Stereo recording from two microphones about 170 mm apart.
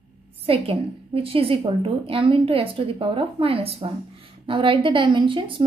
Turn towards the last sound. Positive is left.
turn(degrees=-30)  # may be behind; listen again after turning